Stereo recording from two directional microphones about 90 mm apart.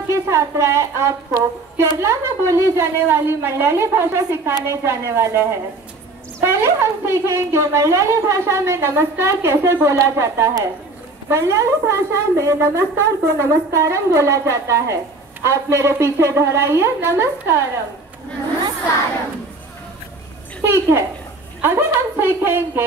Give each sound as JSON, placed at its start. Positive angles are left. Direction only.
{"t": 0.1, "sound": "a woman's voice", "side_deg": -35}
{"t": 20.6, "sound": "a woman's voice", "side_deg": -30}